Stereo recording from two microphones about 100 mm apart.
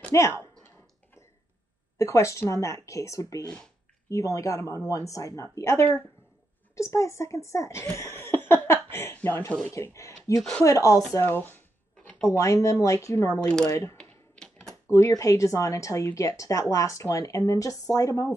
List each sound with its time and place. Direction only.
0.1 s speech: 25° left (ahead or behind)
2.0 s a child's voice: 30° left (ahead or behind)
9.7 s speech: 30° left (ahead or behind)
11.1 s speech: 20° left (ahead or behind)
13.9 s typing: 5° left (ahead or behind)
14.9 s speech: 30° left (ahead or behind)